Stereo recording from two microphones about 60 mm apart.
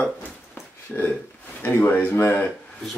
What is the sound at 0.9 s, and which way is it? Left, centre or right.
Speech, left.